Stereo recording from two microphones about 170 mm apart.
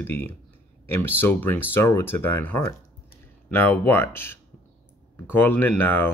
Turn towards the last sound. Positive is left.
turn(degrees=10)  # may be behind; listen again after turning